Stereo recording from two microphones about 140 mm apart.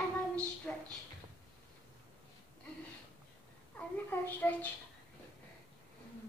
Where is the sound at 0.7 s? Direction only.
10° left (ahead or behind).